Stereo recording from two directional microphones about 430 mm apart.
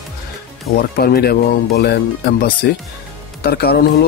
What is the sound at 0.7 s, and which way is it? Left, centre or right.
Speech, left.